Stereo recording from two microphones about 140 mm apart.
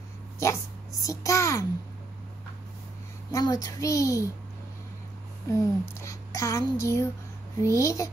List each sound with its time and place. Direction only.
1.0 s speech: 20° left (ahead or behind)
3.3 s speech: 25° left (ahead or behind)
5.5 s speech: 20° left (ahead or behind)